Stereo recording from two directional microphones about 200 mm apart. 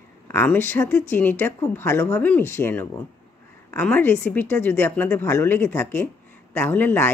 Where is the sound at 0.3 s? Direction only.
10° left (ahead or behind).